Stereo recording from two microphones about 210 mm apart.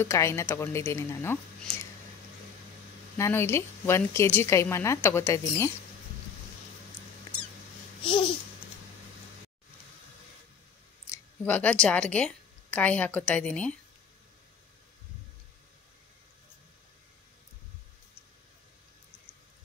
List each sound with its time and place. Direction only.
0.0 s a woman's voice: 15° left (ahead or behind)
3.2 s a woman's voice: 10° left (ahead or behind)
8.0 s a child's voice: 25° left (ahead or behind)
11.1 s a woman's voice: 10° left (ahead or behind)